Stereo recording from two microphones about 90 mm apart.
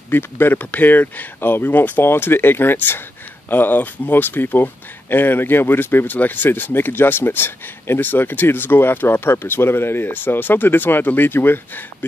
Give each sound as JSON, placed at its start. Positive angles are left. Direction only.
{"t": 0.1, "sound": "speech", "side_deg": 25}